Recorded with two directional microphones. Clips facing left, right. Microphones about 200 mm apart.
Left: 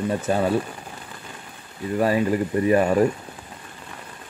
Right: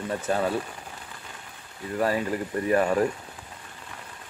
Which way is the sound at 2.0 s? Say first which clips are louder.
Left 5 dB; 15° left (ahead or behind).